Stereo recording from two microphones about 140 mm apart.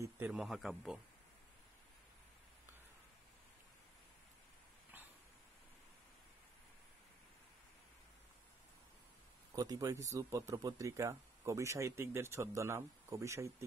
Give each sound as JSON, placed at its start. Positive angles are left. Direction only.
{"t": 0.0, "sound": "a sound", "side_deg": -15}
{"t": 0.4, "sound": "a man's voice", "side_deg": 0}
{"t": 9.6, "sound": "speech", "side_deg": -25}